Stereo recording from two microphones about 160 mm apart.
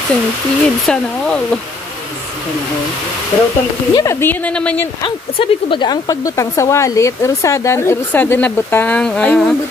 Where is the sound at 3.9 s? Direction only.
20° left (ahead or behind).